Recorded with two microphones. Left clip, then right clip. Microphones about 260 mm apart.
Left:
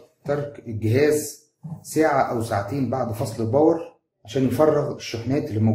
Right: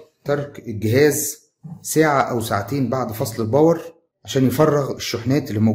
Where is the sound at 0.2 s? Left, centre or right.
Right.